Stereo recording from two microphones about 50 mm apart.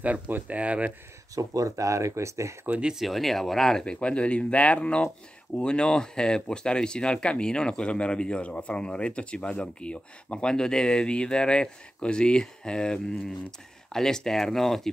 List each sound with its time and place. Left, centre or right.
0.0 s speech: right
1.8 s speech: right
2.8 s speech: centre
3.1 s speech: centre